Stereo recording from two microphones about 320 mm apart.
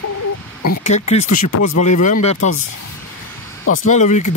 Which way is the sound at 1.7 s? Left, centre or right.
Left.